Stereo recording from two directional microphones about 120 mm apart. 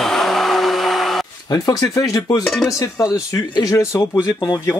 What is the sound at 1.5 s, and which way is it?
Speech, 30° left (ahead or behind).